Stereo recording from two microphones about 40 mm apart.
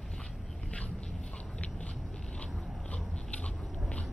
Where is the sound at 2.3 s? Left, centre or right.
Left.